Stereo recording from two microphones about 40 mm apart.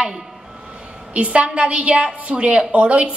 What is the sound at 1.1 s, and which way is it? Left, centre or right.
A woman's voice, right.